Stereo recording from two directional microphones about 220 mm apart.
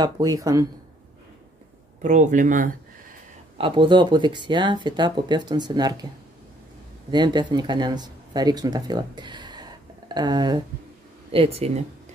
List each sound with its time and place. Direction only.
0.0 s speech: 15° right (ahead or behind)
2.0 s speech: 35° right (ahead or behind)
3.5 s speech: 25° right (ahead or behind)
7.1 s speech: 20° right (ahead or behind)